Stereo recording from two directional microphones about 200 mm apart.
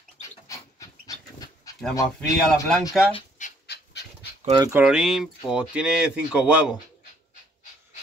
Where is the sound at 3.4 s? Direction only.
40° left (ahead or behind).